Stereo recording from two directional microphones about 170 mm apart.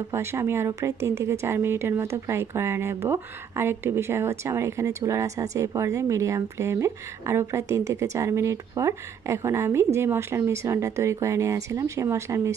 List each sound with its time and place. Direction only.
0.1 s a woman's voice: 15° right (ahead or behind)